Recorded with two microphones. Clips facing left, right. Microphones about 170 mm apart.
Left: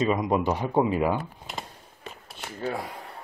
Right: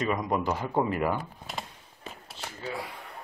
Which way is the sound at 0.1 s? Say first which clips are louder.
Left 4 dB; 20° left (ahead or behind).